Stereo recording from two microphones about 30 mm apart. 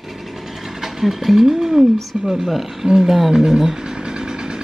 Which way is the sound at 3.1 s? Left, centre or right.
Centre.